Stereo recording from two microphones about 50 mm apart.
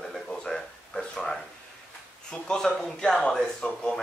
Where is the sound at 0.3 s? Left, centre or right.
Centre.